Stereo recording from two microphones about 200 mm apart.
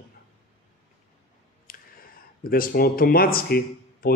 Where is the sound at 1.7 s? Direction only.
45° left (ahead or behind).